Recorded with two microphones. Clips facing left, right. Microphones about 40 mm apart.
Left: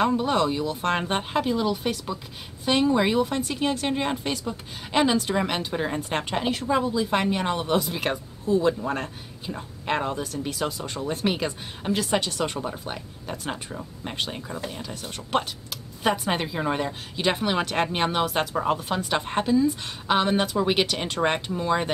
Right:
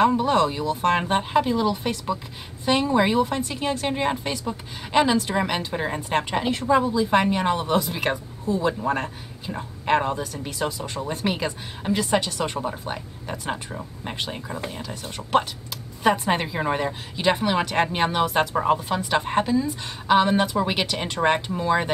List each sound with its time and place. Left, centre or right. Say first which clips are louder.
0.2 s a woman's voice: right 2 dB; centre
9.8 s a man's voice: right 4 dB; centre